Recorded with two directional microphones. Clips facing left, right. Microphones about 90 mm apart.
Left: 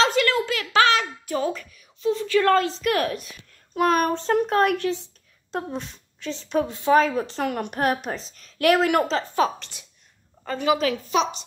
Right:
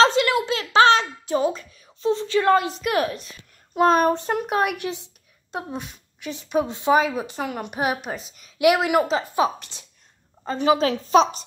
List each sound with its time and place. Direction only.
0.0 s a sound: 25° right (ahead or behind)
2.0 s a woman's voice: 30° right (ahead or behind); by 3.2 s 10° right (ahead or behind)
3.7 s a woman's voice: 25° right (ahead or behind)
10.4 s a woman's voice: 25° right (ahead or behind)